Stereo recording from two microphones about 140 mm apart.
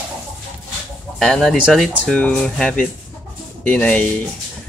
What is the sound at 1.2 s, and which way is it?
Speech, 5° left (ahead or behind).